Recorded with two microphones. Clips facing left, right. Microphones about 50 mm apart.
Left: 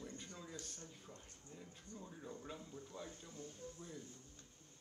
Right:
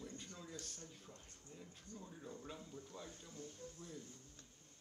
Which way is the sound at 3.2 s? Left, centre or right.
Left.